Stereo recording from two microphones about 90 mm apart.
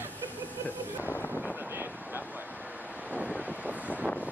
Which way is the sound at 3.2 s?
Centre (ahead or behind).